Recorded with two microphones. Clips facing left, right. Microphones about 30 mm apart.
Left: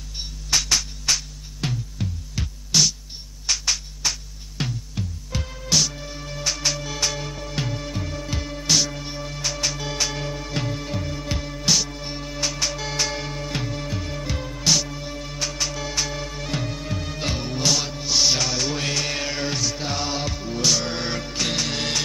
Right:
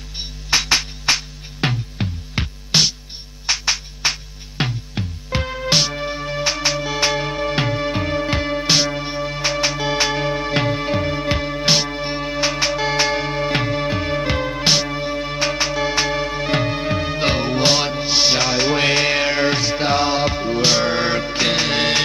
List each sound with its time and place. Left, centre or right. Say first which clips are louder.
0.2 s music: right 4 dB; right
1.7 s music: right 5 dB; right
3.4 s music: right 4 dB; right
4.1 s music: right 5 dB; right